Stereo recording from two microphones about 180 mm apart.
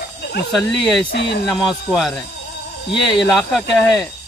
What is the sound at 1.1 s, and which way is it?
Speech, 70° left (ahead or behind).